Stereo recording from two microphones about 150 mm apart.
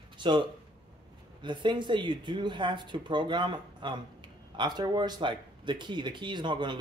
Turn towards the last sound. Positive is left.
turn(degrees=-30)  # may be behind; listen again after turning